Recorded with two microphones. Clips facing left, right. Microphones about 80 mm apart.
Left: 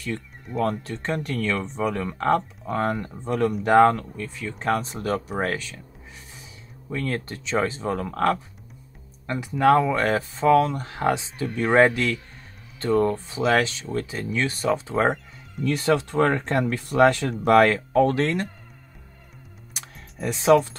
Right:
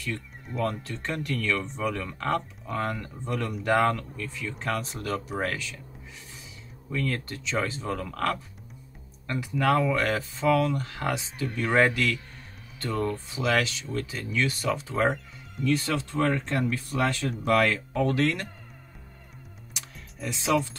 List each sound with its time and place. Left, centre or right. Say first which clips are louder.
0.6 s speech: left 4 dB; left
6.9 s speech: left 2 dB; left
11.4 s speech: left 5 dB; centre
11.8 s speech: left 5 dB; left
15.6 s speech: left 5 dB; left
19.7 s music: left 3 dB; left